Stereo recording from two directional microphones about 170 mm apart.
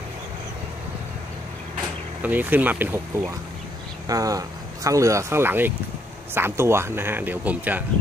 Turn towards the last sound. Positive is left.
turn(degrees=-10)  # may be behind; listen again after turning